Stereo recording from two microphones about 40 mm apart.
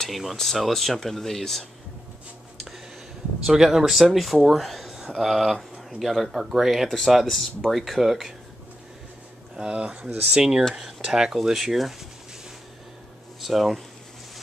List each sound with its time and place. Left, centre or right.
0.1 s speech: centre
3.4 s speech: centre
4.8 s a sound: centre
5.1 s speech: centre
6.9 s speech: centre
9.6 s speech: right
11.3 s speech: centre
13.4 s speech: centre